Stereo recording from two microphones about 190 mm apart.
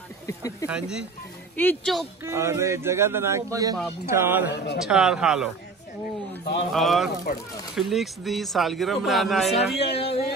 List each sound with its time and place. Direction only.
0.3 s speech: 15° left (ahead or behind)
0.7 s a man's voice: 5° right (ahead or behind)
2.2 s speech: 15° right (ahead or behind)
4.5 s a man's voice: 60° left (ahead or behind)
4.8 s a man's voice: 5° right (ahead or behind)
6.7 s a man's voice: centre (ahead or behind)
7.3 s speech: 50° left (ahead or behind)
7.7 s a man's voice: centre (ahead or behind)
9.9 s music: 30° left (ahead or behind)